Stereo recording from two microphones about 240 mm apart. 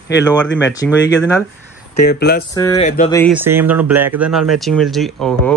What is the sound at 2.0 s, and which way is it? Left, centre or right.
Speech, left.